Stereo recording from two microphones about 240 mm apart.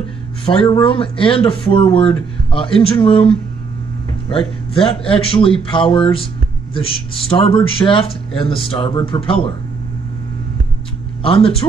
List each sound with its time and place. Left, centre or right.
0.5 s speech: centre
11.2 s speech: left